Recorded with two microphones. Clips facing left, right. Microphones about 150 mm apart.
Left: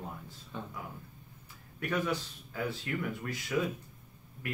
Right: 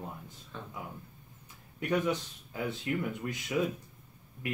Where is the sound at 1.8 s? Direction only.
20° right (ahead or behind).